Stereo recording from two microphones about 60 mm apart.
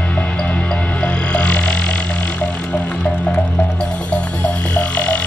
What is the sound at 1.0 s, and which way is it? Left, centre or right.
Music, left.